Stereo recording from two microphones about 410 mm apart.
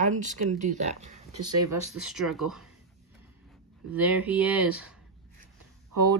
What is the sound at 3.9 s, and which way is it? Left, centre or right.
Speech, centre.